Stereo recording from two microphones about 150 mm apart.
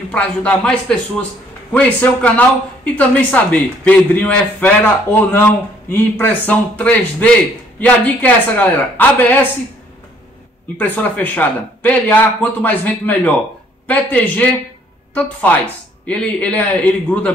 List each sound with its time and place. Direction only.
0.1 s speech: 10° left (ahead or behind)
10.8 s speech: 10° left (ahead or behind)
16.1 s speech: 10° left (ahead or behind)